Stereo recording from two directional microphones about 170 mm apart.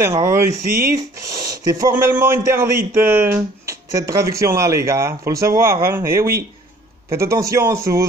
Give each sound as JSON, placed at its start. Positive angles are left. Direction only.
{"t": 0.2, "sound": "speech", "side_deg": -20}